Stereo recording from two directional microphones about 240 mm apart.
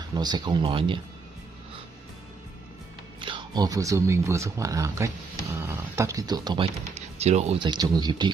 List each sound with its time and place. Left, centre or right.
0.0 s speech: centre
3.2 s speech: centre